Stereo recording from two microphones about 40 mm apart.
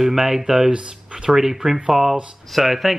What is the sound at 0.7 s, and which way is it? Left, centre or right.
Speech, right.